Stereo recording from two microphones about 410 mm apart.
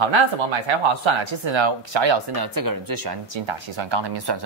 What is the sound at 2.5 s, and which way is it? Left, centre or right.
Speech, right.